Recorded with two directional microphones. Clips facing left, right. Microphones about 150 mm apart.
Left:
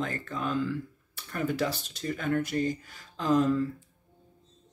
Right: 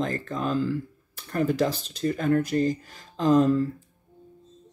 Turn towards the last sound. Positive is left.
turn(degrees=-40)  # may be behind; listen again after turning